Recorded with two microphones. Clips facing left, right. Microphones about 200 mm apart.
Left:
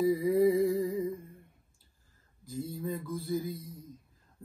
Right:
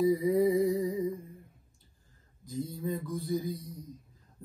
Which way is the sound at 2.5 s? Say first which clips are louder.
Right 1 dB; centre (ahead or behind).